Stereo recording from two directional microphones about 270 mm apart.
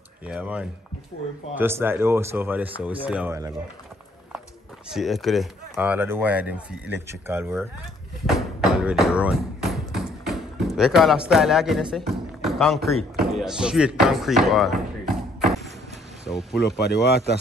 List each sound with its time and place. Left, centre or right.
0.2 s a man's voice: centre
4.9 s a man's voice: centre
8.4 s a sound: centre
10.8 s a man's voice: centre
16.3 s speech: centre
16.6 s speech: left